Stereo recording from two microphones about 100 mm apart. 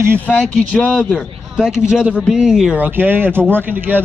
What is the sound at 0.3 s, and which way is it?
Speech, 10° left (ahead or behind).